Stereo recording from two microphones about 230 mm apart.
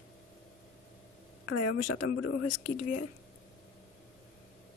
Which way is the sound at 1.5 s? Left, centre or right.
Left.